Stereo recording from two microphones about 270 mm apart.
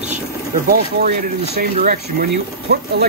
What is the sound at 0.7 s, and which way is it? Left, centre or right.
Speech, right.